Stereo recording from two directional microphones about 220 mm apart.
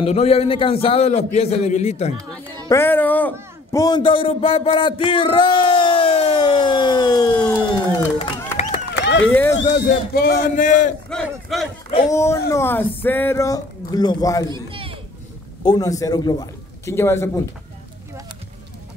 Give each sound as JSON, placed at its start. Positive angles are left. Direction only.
{"t": 0.0, "sound": "a man's voice", "side_deg": 30}
{"t": 2.1, "sound": "speech", "side_deg": -15}
{"t": 2.7, "sound": "speech", "side_deg": 10}
{"t": 3.7, "sound": "a sound", "side_deg": 15}
{"t": 8.9, "sound": "a sound", "side_deg": 55}
{"t": 9.3, "sound": "speech", "side_deg": 10}
{"t": 9.6, "sound": "speech", "side_deg": 45}
{"t": 11.1, "sound": "battle cry", "side_deg": 0}
{"t": 12.1, "sound": "speech", "side_deg": 15}
{"t": 14.5, "sound": "a sound", "side_deg": -25}
{"t": 15.6, "sound": "a man's voice", "side_deg": 20}